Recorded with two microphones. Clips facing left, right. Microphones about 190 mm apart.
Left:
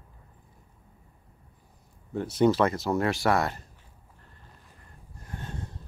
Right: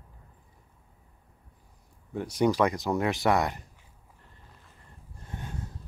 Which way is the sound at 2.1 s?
10° right (ahead or behind).